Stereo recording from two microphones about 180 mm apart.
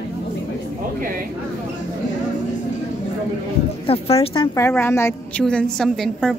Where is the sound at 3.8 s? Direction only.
30° left (ahead or behind).